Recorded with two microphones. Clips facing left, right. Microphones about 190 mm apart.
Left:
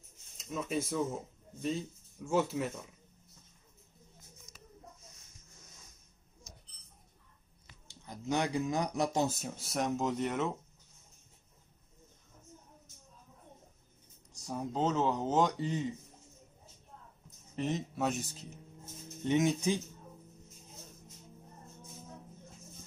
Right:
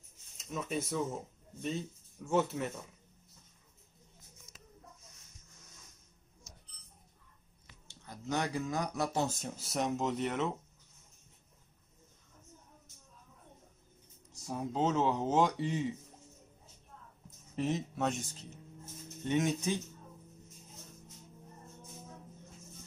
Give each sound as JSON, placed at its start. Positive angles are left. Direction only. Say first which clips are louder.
{"t": 0.4, "sound": "speech", "louder": "left 2 dB", "side_deg": 0}
{"t": 7.9, "sound": "speech", "louder": "left 2 dB", "side_deg": 15}
{"t": 9.4, "sound": "speech", "louder": "even", "side_deg": 0}
{"t": 14.4, "sound": "speech", "louder": "even", "side_deg": 0}
{"t": 17.6, "sound": "speech", "louder": "even", "side_deg": 0}